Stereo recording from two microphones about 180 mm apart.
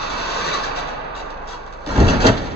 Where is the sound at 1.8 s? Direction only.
65° left (ahead or behind).